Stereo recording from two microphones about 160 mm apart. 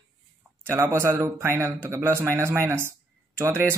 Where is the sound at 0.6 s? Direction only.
15° right (ahead or behind).